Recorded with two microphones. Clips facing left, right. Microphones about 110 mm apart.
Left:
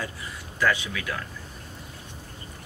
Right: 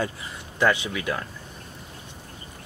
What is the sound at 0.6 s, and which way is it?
Speech, 25° right (ahead or behind).